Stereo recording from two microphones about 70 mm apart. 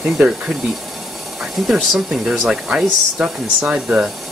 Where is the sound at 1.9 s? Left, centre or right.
Centre.